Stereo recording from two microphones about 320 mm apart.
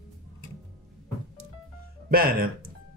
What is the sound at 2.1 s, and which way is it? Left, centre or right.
Speech, right.